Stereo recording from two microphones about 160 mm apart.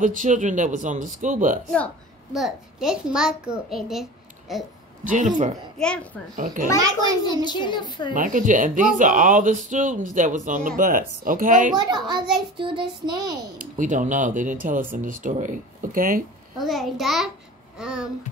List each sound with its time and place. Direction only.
0.0 s speech: 55° right (ahead or behind)
2.3 s a child's voice: centre (ahead or behind)
5.0 s speech: 50° right (ahead or behind)
5.8 s a child's voice: 5° left (ahead or behind)
6.3 s speech: 55° right (ahead or behind)
6.8 s child singing: 25° right (ahead or behind)
7.4 s a child's voice: 30° left (ahead or behind)
8.1 s speech: 55° right (ahead or behind)
11.7 s child singing: 25° right (ahead or behind)
13.6 s speech: 50° right (ahead or behind)
16.5 s a child's voice: centre (ahead or behind)
17.7 s a sound: 5° right (ahead or behind)